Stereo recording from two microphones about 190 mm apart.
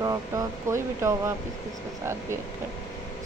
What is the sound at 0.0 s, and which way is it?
Speech, 15° right (ahead or behind).